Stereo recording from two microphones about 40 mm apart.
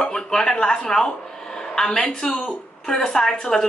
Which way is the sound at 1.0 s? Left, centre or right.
Left.